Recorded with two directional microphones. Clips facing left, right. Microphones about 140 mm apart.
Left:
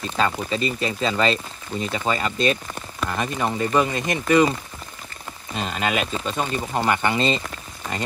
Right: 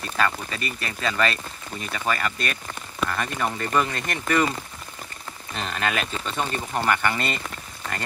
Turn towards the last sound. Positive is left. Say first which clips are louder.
# left 2 dB
turn(degrees=10)  # may be behind; listen again after turning